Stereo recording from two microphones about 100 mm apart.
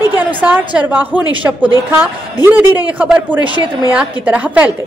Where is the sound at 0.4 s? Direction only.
15° right (ahead or behind).